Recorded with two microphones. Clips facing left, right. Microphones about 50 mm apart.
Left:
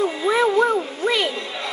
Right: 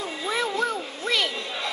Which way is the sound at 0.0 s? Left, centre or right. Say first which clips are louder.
Left 9 dB; left.